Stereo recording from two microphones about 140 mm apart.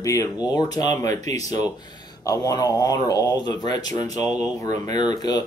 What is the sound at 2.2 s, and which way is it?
Speech, 25° left (ahead or behind).